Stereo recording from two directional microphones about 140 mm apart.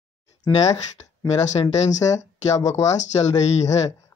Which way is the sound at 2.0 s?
25° left (ahead or behind).